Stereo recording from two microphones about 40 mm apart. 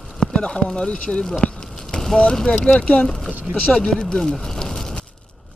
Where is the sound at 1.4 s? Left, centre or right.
Left.